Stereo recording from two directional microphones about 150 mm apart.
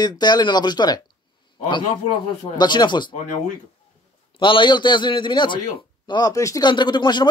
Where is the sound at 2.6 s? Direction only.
30° left (ahead or behind).